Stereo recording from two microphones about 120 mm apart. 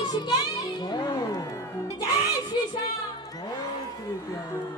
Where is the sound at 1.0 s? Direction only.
30° left (ahead or behind).